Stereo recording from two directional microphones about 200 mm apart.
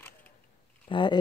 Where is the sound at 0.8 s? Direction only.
25° left (ahead or behind).